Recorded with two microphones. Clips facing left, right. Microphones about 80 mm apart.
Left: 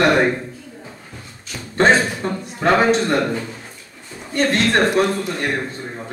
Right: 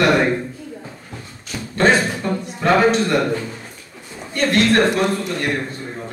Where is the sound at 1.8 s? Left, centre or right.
Left.